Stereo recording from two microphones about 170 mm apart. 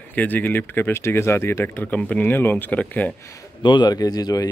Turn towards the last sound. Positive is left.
turn(degrees=25)  # may be behind; listen again after turning